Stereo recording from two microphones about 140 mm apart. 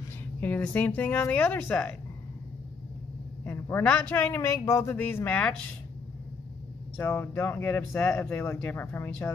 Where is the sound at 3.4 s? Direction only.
15° left (ahead or behind).